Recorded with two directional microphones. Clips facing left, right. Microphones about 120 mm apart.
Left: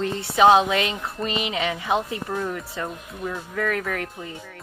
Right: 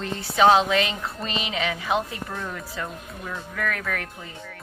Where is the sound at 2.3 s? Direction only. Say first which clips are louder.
Left 6 dB; 10° left (ahead or behind).